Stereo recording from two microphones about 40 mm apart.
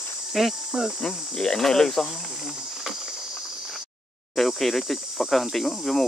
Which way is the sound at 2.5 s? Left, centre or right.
Centre.